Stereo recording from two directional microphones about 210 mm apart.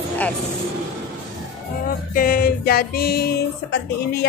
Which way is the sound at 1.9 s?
45° left (ahead or behind).